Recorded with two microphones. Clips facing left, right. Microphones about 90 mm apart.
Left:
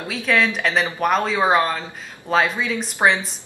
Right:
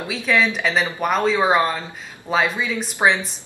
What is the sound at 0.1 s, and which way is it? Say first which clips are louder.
Speech: even; centre (ahead or behind).